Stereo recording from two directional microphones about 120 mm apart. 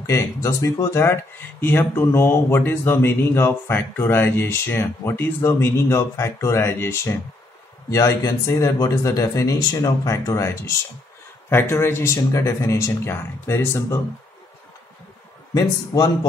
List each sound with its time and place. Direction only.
0.0 s speech: 25° left (ahead or behind)
15.5 s speech: 30° left (ahead or behind)